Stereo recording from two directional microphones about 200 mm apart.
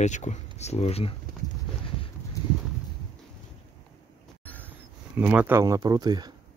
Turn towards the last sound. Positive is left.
turn(degrees=-20)  # may be behind; listen again after turning